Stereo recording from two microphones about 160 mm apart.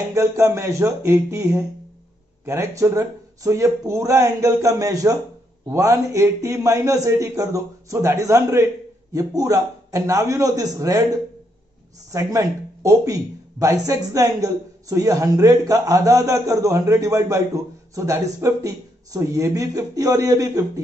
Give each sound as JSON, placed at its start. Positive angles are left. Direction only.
{"t": 0.1, "sound": "speech", "side_deg": -15}
{"t": 12.1, "sound": "speech", "side_deg": -20}